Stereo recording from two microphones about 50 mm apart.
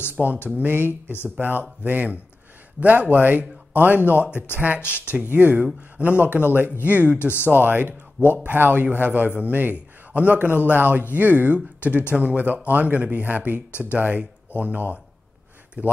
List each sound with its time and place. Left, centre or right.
0.1 s a man's voice: right
1.8 s a man's voice: right
5.2 s a man's voice: right
6.0 s a man's voice: right
7.2 s speech: left
7.4 s a man's voice: right
13.7 s speech: left
13.9 s a man's voice: right